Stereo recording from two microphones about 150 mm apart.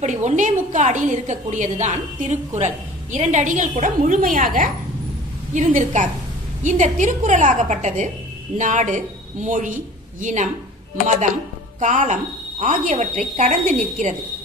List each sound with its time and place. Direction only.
0.0 s a woman's voice: 55° right (ahead or behind)
5.5 s a woman's voice: 55° right (ahead or behind)
11.8 s a woman's voice: 55° right (ahead or behind)